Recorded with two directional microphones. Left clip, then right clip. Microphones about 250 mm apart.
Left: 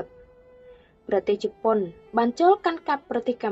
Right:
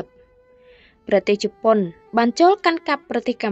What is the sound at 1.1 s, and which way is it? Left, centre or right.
Speech, right.